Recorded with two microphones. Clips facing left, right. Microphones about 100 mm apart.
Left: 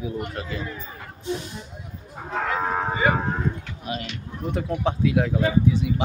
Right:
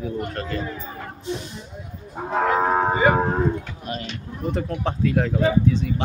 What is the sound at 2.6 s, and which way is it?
Speech, 35° right (ahead or behind).